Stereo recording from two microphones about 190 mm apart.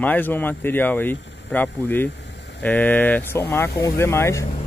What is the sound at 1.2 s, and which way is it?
Vehicle, 65° left (ahead or behind).